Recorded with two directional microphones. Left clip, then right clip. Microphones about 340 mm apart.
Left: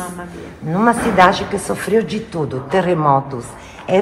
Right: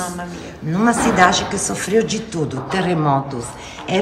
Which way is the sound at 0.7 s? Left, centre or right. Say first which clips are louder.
Left 2 dB; centre.